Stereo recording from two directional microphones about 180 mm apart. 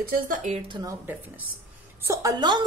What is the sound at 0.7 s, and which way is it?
Speech, 25° right (ahead or behind).